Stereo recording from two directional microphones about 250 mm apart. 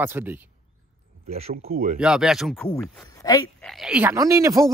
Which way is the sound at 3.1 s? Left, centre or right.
Centre.